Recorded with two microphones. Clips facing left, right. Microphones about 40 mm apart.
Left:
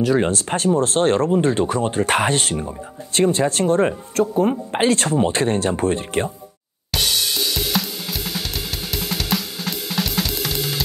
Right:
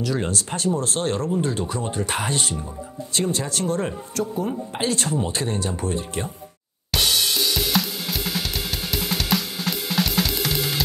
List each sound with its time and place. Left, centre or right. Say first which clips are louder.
0.0 s speech: left 7 dB; left
6.9 s drum kit: even; centre